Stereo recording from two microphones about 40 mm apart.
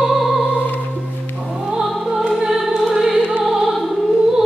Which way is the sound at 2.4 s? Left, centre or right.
Centre.